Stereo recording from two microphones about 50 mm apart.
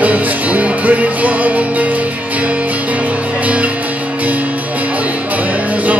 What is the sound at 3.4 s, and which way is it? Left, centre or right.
Music, right.